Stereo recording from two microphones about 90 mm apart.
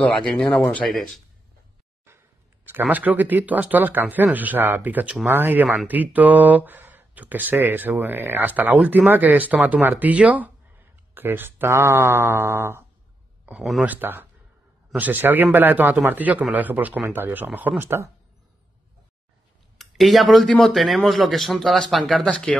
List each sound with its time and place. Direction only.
0.1 s speech: 15° left (ahead or behind)
2.0 s speech: 25° right (ahead or behind)
13.5 s speech: centre (ahead or behind)
13.8 s speech: 20° right (ahead or behind)
19.8 s speech: centre (ahead or behind)